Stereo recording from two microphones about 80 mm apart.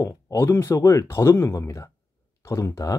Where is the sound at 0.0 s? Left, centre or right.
Left.